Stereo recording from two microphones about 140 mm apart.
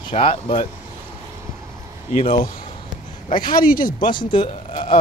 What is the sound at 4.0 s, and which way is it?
Speech, 35° left (ahead or behind).